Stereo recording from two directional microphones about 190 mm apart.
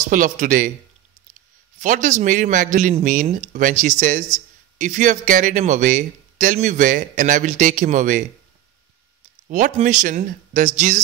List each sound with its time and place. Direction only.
0.1 s speech: 45° right (ahead or behind)
1.8 s a man's voice: 40° right (ahead or behind)
9.5 s a man's voice: 40° right (ahead or behind)